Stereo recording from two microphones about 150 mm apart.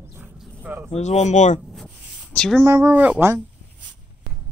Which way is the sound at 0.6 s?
15° right (ahead or behind).